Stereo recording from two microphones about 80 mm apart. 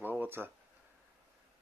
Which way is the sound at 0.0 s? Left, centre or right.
Right.